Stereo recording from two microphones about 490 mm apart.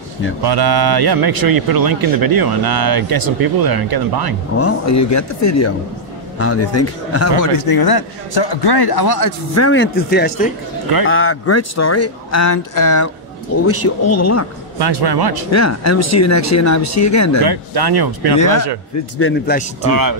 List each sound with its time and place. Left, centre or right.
0.4 s speech: right
4.6 s a man's voice: left
9.6 s speech: left
14.8 s speech: right
15.5 s speech: left
17.4 s speech: right
18.4 s speech: left
19.1 s speech: left
19.9 s speech: right